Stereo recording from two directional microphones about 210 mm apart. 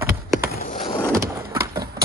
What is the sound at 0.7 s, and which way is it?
Vehicle, 25° left (ahead or behind).